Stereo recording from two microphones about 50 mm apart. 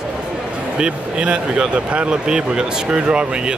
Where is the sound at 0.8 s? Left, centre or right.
Centre.